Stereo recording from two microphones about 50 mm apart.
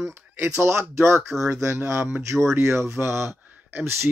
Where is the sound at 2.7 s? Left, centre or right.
Right.